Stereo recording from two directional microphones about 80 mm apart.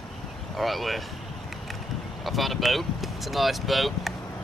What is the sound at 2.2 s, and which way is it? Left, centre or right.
Speech, centre.